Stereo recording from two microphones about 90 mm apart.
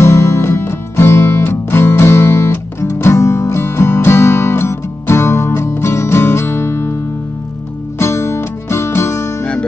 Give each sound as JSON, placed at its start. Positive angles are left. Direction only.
{"t": 0.0, "sound": "music", "side_deg": 30}
{"t": 8.0, "sound": "music", "side_deg": 30}
{"t": 9.4, "sound": "music", "side_deg": 10}